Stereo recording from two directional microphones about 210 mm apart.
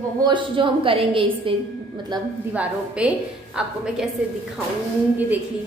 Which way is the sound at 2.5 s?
5° right (ahead or behind).